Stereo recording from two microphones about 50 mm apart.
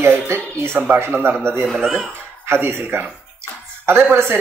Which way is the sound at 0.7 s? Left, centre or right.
Right.